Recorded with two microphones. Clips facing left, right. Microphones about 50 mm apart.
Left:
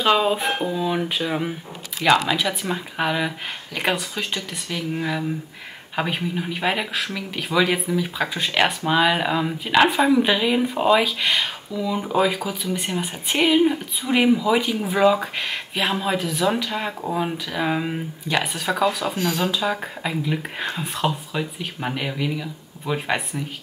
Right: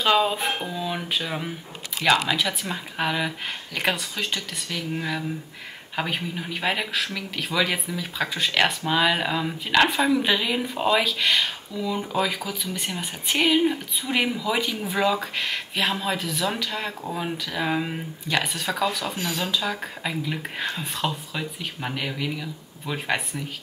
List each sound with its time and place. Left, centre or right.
0.0 s speech: centre
18.4 s speech: centre
20.0 s speech: centre